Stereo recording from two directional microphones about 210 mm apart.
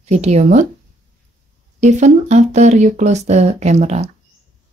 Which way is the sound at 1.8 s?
35° right (ahead or behind).